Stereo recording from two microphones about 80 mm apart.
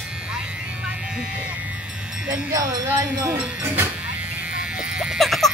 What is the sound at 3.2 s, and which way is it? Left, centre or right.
Speech, centre.